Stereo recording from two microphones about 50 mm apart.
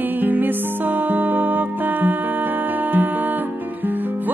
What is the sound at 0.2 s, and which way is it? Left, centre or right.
Music, right.